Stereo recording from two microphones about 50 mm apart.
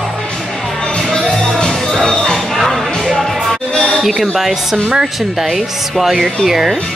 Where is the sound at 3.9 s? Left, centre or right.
Centre.